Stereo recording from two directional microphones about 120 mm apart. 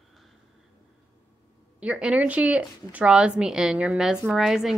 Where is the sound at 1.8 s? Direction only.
10° right (ahead or behind).